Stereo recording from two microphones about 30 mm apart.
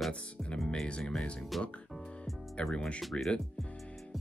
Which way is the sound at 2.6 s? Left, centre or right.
Left.